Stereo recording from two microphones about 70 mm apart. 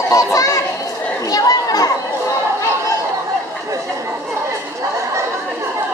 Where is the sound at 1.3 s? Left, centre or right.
Left.